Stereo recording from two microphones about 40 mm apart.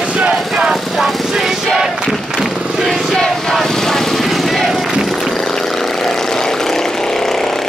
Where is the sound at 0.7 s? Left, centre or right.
Centre.